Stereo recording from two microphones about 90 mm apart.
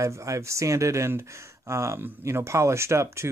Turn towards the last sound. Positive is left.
turn(degrees=-30)  # may be behind; listen again after turning